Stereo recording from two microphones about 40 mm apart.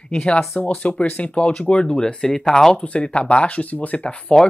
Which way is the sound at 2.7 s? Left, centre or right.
Left.